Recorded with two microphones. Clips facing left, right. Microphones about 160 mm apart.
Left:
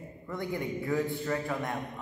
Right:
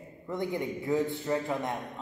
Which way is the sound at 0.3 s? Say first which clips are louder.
Right 2 dB; 20° right (ahead or behind).